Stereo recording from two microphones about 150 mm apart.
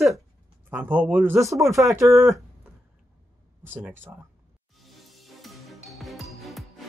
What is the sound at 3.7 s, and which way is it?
Speech, 15° right (ahead or behind).